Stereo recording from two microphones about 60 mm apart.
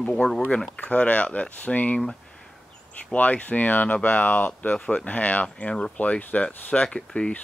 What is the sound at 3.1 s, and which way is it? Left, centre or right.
Speech, left.